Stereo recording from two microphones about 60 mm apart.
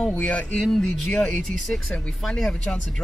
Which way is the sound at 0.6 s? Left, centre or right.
Centre.